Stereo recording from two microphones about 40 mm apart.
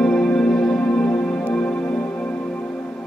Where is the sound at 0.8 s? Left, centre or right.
Left.